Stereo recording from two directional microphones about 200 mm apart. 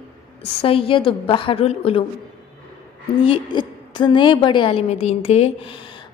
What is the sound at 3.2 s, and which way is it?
A woman's voice, 25° left (ahead or behind).